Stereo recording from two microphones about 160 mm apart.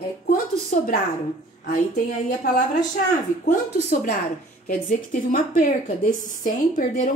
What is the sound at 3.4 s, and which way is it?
A woman's voice, 55° left (ahead or behind).